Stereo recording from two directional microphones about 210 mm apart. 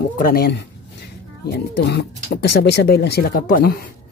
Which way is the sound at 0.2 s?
45° left (ahead or behind).